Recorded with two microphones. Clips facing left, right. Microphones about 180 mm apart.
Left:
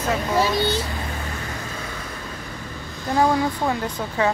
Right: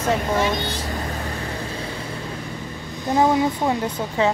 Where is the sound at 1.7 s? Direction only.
30° right (ahead or behind).